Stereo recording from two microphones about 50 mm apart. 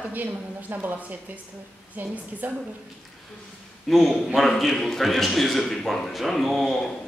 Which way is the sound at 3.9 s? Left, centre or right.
Centre.